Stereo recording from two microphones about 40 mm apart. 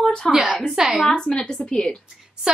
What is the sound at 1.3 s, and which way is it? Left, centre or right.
Speech, left.